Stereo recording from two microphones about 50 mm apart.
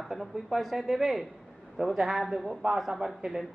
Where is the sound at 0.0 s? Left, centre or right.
Centre.